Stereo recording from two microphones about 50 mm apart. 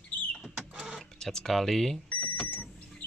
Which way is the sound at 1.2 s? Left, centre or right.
Centre.